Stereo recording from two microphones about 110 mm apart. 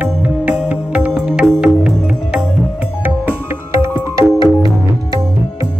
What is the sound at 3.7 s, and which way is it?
Music, 25° right (ahead or behind).